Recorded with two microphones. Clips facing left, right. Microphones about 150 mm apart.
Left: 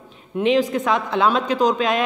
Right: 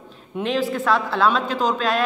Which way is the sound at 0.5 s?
15° left (ahead or behind).